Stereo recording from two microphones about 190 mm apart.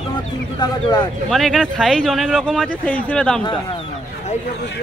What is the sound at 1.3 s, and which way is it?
Speech, centre (ahead or behind).